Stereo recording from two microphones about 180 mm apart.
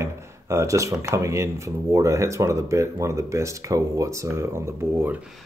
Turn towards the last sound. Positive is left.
turn(degrees=-15)  # may be behind; listen again after turning